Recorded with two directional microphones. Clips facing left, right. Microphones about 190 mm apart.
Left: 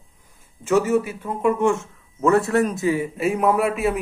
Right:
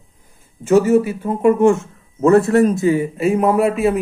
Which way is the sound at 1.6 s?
30° right (ahead or behind).